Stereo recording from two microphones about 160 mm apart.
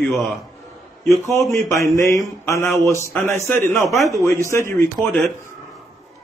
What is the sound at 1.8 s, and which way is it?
Speech, 20° left (ahead or behind).